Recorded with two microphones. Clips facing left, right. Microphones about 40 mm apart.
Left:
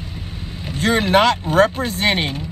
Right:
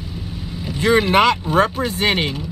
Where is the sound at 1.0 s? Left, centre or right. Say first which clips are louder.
Even; right.